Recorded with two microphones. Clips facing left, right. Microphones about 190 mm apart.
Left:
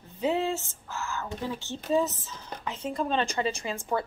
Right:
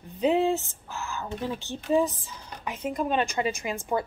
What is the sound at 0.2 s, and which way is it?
A woman's voice, 15° right (ahead or behind).